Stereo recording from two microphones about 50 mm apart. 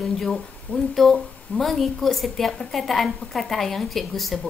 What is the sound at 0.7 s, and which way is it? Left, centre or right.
Speech, left.